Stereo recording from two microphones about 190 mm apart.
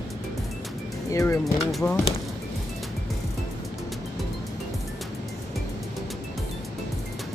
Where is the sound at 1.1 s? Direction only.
15° left (ahead or behind).